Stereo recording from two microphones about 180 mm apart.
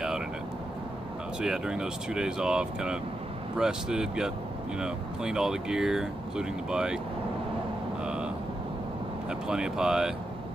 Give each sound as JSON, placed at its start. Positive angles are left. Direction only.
{"t": 1.4, "sound": "speech", "side_deg": -5}
{"t": 8.0, "sound": "vehicle", "side_deg": -5}
{"t": 9.3, "sound": "speech", "side_deg": -5}